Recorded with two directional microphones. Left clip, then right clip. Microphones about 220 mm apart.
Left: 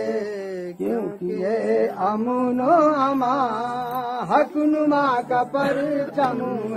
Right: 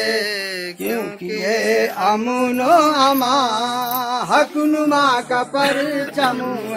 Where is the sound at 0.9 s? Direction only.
25° right (ahead or behind); by 4.4 s 55° right (ahead or behind).